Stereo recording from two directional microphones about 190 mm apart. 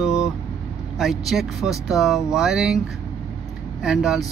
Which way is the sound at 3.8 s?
5° right (ahead or behind).